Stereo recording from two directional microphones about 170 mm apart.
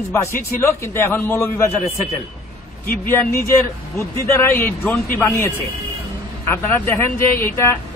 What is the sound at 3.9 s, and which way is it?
A man's voice, 15° left (ahead or behind).